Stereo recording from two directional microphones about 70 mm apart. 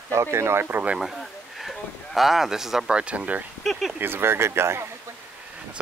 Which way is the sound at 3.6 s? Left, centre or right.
Centre.